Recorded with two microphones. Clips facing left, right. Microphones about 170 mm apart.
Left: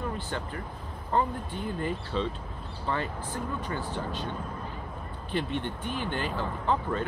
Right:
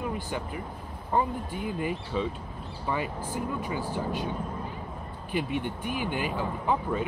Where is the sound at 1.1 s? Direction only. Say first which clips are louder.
Right 1 dB; 10° right (ahead or behind).